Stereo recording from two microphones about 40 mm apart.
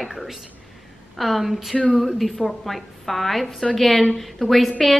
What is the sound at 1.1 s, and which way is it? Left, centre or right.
A woman's voice, centre.